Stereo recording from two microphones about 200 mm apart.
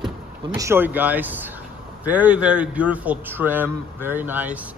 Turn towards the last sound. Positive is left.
turn(degrees=-10)  # may be behind; listen again after turning